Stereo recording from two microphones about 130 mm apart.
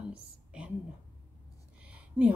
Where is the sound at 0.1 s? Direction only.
10° right (ahead or behind).